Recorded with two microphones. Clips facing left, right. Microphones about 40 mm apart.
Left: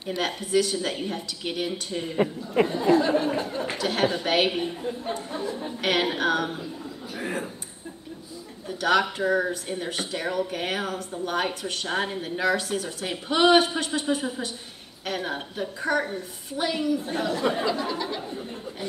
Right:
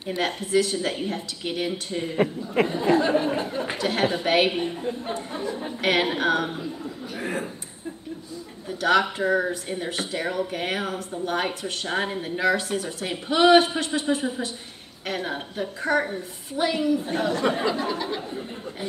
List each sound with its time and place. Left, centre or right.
0.0 s speech: centre
8.6 s speech: centre